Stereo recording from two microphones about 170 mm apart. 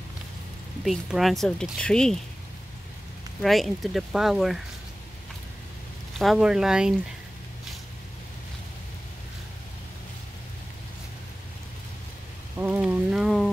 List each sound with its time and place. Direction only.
0.8 s speech: centre (ahead or behind)
3.4 s speech: centre (ahead or behind)
6.1 s speech: centre (ahead or behind)
12.5 s a sound: 10° right (ahead or behind)